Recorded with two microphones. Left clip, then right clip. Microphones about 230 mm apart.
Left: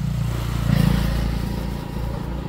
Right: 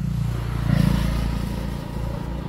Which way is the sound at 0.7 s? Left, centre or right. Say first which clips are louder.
Left 1 dB; left.